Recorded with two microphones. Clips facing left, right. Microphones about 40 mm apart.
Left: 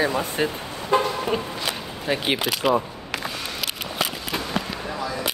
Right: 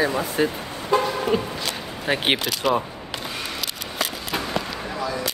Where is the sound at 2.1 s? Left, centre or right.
Right.